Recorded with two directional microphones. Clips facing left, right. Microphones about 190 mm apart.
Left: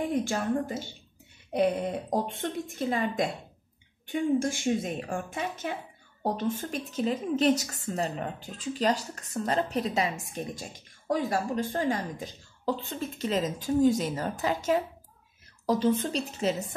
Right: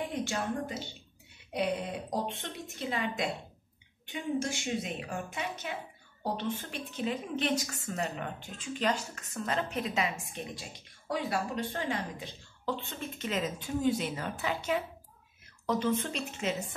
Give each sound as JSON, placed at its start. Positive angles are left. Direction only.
{"t": 0.1, "sound": "a woman's voice", "side_deg": 50}